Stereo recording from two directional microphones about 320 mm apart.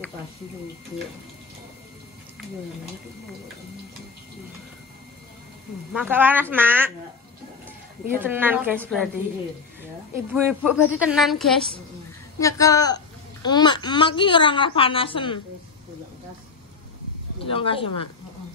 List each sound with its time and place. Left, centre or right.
5.9 s a woman's voice: centre
10.1 s a woman's voice: centre
17.4 s speech: centre